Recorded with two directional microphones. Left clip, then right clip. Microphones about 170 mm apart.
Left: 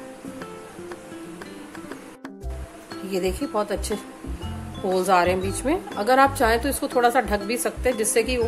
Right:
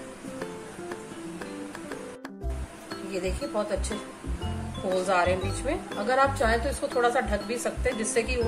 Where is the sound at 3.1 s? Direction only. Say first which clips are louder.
Left 6 dB; 70° left (ahead or behind).